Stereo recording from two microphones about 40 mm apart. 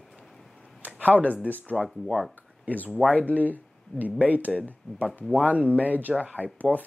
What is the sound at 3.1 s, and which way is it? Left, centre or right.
Speech, right.